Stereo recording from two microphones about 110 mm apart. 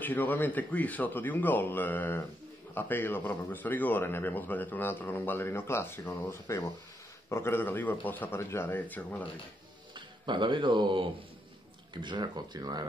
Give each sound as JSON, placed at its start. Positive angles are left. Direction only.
{"t": 0.0, "sound": "a man's voice", "side_deg": 15}
{"t": 9.9, "sound": "speech", "side_deg": -45}